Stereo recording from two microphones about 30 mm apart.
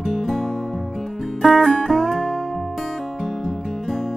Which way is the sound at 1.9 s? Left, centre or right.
Centre.